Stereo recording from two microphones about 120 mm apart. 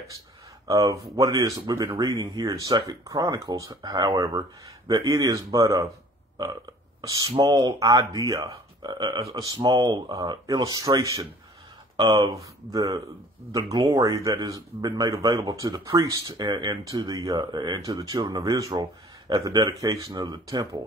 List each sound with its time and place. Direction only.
0.7 s speech: 25° right (ahead or behind)
7.0 s speech: 30° right (ahead or behind)